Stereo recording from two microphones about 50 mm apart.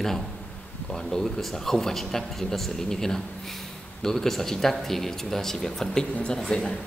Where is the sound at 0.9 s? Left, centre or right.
Centre.